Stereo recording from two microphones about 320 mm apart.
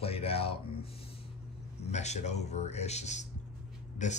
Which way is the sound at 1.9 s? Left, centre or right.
Left.